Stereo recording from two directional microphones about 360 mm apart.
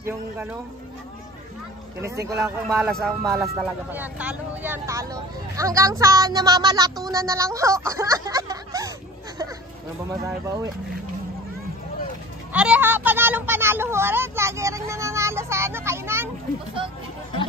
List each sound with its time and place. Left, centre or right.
0.0 s speech: centre
2.0 s speech: centre
10.2 s speech: centre
12.5 s speech: centre